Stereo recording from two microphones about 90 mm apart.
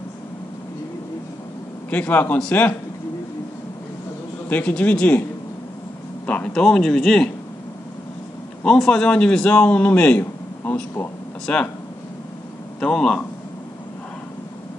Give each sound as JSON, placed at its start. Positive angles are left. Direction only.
{"t": 1.9, "sound": "a man's voice", "side_deg": 20}
{"t": 4.5, "sound": "a man's voice", "side_deg": 15}
{"t": 6.2, "sound": "a man's voice", "side_deg": 15}
{"t": 8.6, "sound": "a man's voice", "side_deg": 5}
{"t": 12.8, "sound": "a man's voice", "side_deg": 10}